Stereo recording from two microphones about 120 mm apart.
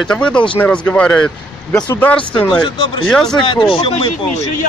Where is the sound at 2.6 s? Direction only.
45° left (ahead or behind).